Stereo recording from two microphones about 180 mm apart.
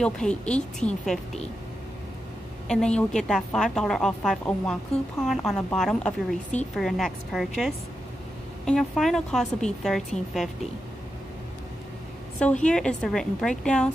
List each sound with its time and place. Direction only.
0.0 s a woman's voice: 5° left (ahead or behind)
2.7 s a woman's voice: 5° left (ahead or behind)
12.4 s a woman's voice: 5° left (ahead or behind)